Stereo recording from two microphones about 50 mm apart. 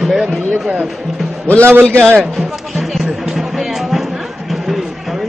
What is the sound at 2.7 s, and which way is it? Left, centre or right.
Music, centre.